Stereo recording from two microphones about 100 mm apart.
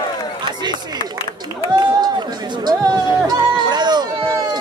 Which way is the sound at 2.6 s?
45° right (ahead or behind).